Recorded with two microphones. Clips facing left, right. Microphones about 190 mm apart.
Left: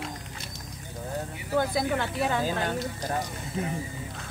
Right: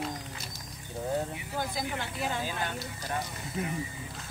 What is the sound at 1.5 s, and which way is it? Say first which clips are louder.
Speech: left 9 dB; 60° left (ahead or behind).